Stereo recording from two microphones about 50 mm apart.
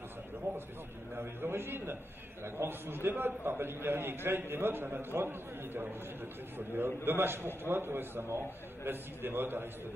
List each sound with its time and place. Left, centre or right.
1.1 s a man's voice: right
6.8 s a man's voice: right